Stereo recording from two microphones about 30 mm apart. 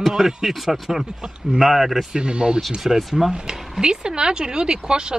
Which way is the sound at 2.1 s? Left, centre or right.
Right.